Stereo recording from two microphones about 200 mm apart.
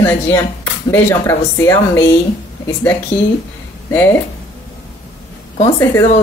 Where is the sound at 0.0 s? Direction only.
10° left (ahead or behind).